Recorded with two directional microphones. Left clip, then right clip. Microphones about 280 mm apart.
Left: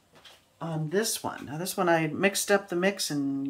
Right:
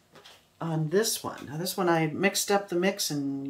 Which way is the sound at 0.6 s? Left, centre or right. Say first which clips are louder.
Right 2 dB; centre.